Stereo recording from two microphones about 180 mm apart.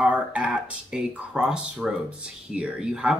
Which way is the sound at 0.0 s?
10° right (ahead or behind).